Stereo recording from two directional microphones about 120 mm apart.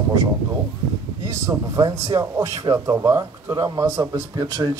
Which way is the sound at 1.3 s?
25° right (ahead or behind).